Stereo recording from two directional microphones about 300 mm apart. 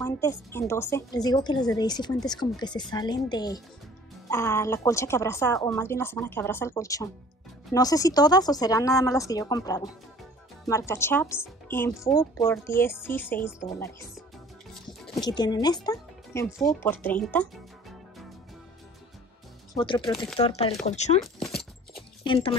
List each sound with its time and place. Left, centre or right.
0.0 s a woman's voice: centre
16.8 s music: centre
19.7 s speech: centre
21.2 s a sound: centre
22.2 s speech: centre